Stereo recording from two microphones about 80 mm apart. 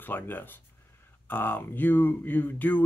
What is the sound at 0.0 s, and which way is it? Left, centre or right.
Speech, left.